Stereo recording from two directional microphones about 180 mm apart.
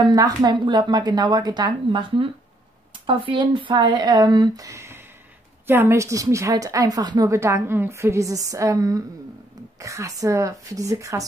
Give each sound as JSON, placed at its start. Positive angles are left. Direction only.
{"t": 0.0, "sound": "a woman's voice", "side_deg": -20}